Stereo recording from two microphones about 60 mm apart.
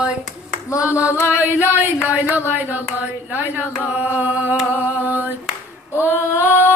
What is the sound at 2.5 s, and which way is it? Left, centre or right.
Hands, right.